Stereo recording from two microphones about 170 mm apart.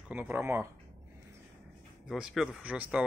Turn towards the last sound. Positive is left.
turn(degrees=-5)  # may be behind; listen again after turning